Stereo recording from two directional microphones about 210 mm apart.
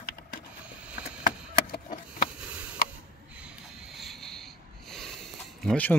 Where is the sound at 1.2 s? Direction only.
40° left (ahead or behind).